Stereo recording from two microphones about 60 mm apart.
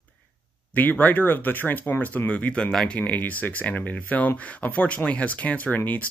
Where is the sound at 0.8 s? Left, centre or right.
Left.